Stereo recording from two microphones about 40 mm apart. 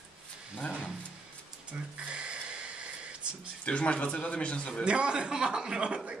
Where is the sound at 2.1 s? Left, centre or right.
Right.